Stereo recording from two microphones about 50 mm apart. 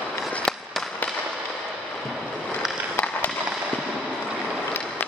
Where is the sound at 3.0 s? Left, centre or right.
Left.